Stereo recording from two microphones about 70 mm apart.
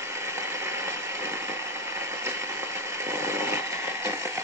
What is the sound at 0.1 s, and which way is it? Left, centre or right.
Vehicle, right.